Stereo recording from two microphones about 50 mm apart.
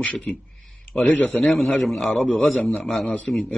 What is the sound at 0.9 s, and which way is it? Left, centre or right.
Speech, left.